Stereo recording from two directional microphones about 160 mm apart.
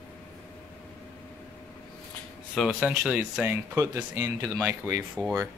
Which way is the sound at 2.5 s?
Centre (ahead or behind).